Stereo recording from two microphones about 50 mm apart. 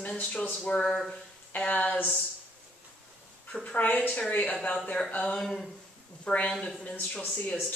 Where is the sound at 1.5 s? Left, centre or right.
Left.